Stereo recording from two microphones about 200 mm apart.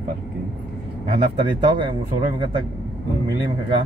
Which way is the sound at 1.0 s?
25° right (ahead or behind).